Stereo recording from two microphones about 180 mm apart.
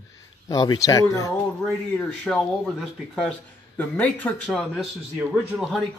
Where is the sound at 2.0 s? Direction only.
5° left (ahead or behind).